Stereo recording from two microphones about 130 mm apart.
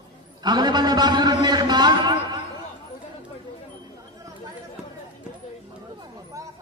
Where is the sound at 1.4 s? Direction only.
35° right (ahead or behind).